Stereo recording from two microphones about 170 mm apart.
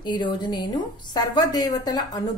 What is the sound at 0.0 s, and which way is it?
A woman's voice, 25° left (ahead or behind).